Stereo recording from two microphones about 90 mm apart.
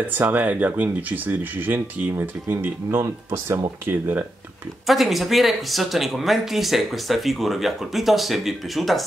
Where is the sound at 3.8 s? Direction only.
20° right (ahead or behind).